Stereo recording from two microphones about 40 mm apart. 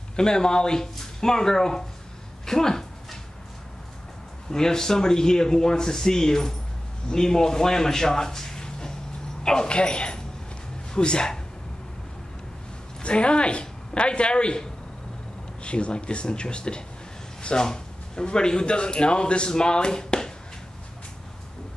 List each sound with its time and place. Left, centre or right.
0.1 s speech: centre
2.4 s a sound: centre
4.5 s speech: centre
13.0 s speech: left